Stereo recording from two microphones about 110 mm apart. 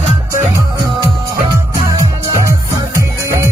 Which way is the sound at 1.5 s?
30° right (ahead or behind).